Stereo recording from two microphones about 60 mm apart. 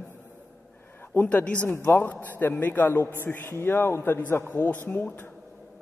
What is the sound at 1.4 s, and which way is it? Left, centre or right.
A man's voice, left.